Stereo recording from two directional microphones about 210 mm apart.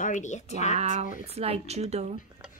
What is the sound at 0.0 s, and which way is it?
Speech, 35° left (ahead or behind).